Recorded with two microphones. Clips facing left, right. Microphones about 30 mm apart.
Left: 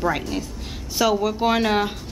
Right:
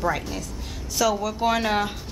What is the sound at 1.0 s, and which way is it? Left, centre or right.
Speech, left.